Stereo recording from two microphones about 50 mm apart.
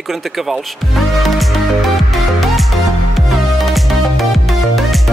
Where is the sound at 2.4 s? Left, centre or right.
Centre.